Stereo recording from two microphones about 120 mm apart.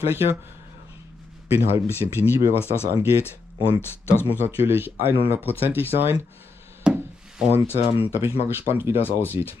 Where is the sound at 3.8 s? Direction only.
20° left (ahead or behind).